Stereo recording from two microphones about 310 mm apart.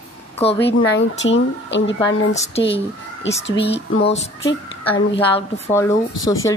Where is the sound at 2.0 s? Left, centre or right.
Centre.